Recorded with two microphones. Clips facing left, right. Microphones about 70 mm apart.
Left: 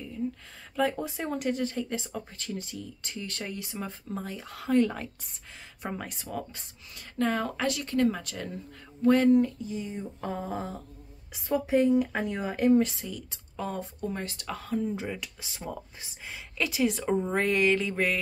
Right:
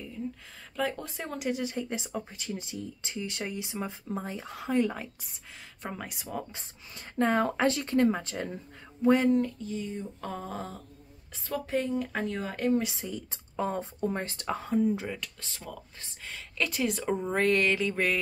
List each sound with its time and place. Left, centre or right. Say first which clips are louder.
0.7 s speech: left 4 dB; centre
1.5 s speech: left 2 dB; centre
4.2 s speech: right 1 dB; right; by 5.3 s centre
5.8 s speech: left 3 dB; centre
6.0 s speech: left 1 dB; centre
6.5 s speech: right 1 dB; right
9.0 s speech: left 1 dB; centre
9.3 s a sound: left 4 dB; centre
12.8 s speech: left 2 dB; centre
13.1 s speech: right 3 dB; right
14.8 s speech: right 6 dB; centre
15.6 s speech: left 6 dB; left
16.1 s speech: left 1 dB; centre